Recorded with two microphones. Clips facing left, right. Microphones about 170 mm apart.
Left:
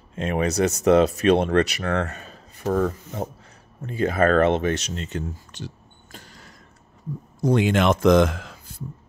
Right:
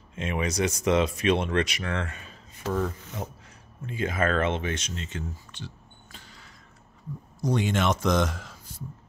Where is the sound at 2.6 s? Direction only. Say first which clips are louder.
Left 6 dB; 55° left (ahead or behind).